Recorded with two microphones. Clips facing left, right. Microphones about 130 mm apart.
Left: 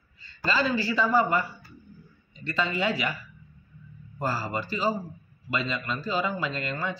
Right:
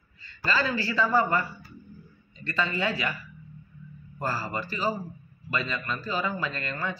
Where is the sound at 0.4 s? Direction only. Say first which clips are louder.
Left 2 dB; 20° left (ahead or behind).